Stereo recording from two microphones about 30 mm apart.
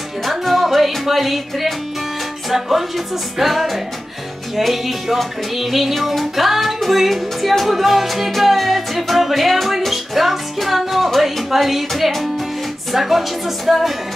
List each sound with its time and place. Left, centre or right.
0.2 s music: centre
3.3 s music: centre